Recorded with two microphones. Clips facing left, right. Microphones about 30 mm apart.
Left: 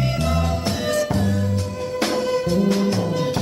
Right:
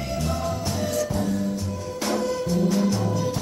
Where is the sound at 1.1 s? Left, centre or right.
Left.